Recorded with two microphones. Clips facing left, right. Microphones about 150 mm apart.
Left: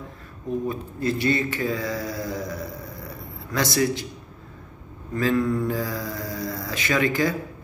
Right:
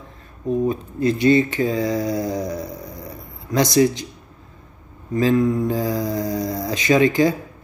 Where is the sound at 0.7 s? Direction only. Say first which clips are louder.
Right 6 dB; 20° right (ahead or behind).